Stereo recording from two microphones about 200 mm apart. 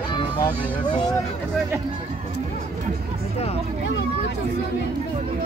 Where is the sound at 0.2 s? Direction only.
20° left (ahead or behind).